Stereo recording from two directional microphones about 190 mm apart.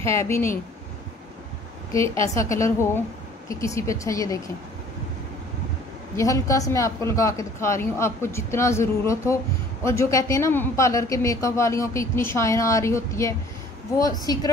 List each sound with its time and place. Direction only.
0.1 s speech: 15° left (ahead or behind)
2.2 s speech: 15° left (ahead or behind)
6.1 s speech: 15° left (ahead or behind)